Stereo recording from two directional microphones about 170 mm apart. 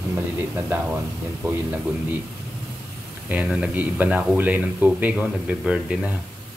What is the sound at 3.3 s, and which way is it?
Speech, 10° right (ahead or behind).